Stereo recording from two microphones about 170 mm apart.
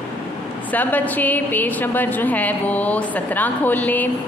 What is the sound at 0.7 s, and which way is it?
A woman's voice, 10° left (ahead or behind).